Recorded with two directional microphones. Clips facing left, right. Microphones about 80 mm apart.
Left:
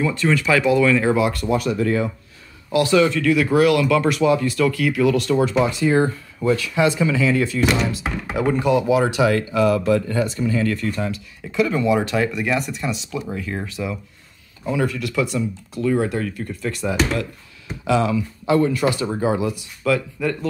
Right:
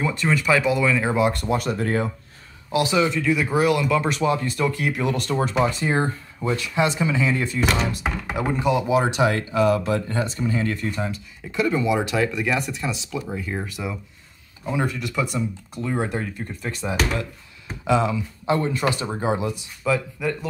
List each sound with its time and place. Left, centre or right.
0.0 s speech: centre
1.1 s speech: right
2.7 s speech: centre
4.1 s speech: right
8.6 s speech: right
11.6 s speech: centre
14.7 s speech: right
19.8 s speech: centre